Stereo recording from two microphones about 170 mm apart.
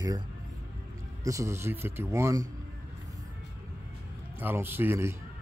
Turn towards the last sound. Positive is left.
turn(degrees=-15)  # may be behind; listen again after turning